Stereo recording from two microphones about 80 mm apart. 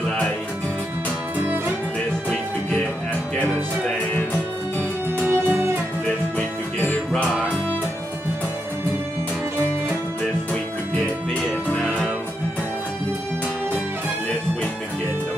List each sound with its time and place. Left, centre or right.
3.3 s music: left
5.2 s music: right
6.3 s music: centre